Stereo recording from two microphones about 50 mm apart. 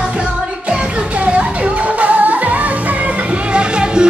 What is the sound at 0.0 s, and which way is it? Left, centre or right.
Music, right.